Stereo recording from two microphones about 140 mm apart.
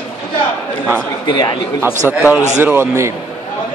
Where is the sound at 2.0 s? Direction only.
10° right (ahead or behind).